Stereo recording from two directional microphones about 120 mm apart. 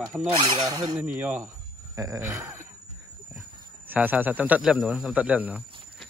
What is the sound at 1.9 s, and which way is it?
Speech, 30° right (ahead or behind).